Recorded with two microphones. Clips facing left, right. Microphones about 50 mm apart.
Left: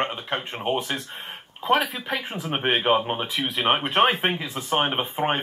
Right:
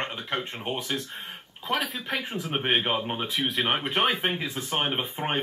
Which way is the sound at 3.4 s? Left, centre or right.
Centre.